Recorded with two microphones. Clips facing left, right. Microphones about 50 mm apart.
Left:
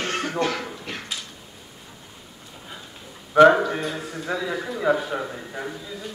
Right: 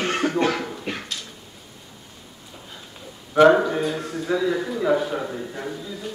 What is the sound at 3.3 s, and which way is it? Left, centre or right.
A man's voice, centre.